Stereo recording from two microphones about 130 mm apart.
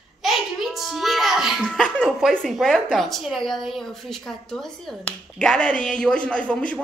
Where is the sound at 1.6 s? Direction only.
5° left (ahead or behind).